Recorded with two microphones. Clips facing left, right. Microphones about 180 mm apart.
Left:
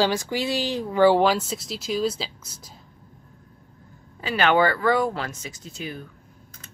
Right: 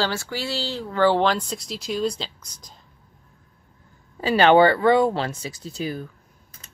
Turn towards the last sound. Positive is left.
turn(degrees=-35)  # may be behind; listen again after turning